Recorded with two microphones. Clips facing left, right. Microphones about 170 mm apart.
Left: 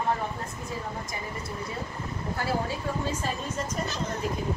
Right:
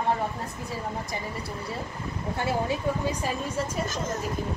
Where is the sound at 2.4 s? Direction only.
15° right (ahead or behind).